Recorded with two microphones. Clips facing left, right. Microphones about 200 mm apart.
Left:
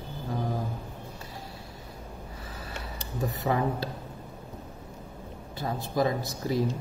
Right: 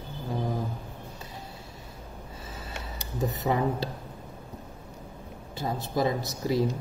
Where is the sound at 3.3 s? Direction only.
20° right (ahead or behind).